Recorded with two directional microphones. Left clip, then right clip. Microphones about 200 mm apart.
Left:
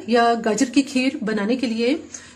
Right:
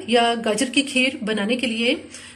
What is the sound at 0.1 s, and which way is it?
A woman's voice, 45° left (ahead or behind).